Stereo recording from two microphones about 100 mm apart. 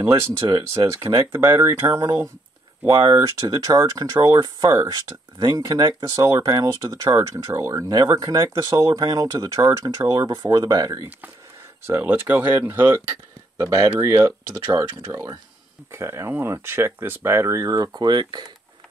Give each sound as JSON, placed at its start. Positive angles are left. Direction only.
{"t": 0.4, "sound": "speech", "side_deg": -45}
{"t": 1.0, "sound": "speech", "side_deg": -25}
{"t": 2.9, "sound": "speech", "side_deg": -40}
{"t": 11.9, "sound": "speech", "side_deg": -20}
{"t": 13.6, "sound": "speech", "side_deg": -35}